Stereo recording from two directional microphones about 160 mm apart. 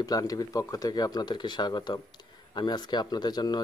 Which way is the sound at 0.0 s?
25° left (ahead or behind).